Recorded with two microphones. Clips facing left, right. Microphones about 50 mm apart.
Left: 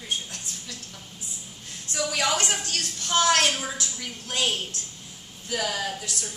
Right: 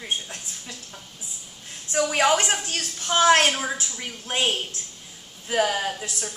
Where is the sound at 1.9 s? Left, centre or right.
Right.